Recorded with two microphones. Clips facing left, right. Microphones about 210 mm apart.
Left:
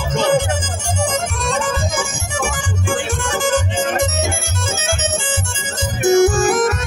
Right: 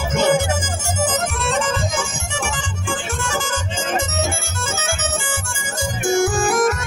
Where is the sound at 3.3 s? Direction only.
15° left (ahead or behind).